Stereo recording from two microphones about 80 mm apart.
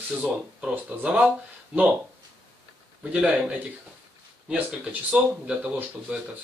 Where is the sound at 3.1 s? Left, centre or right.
Centre.